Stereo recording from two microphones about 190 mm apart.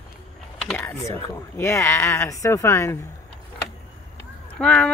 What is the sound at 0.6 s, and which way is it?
Mechanisms, 10° left (ahead or behind).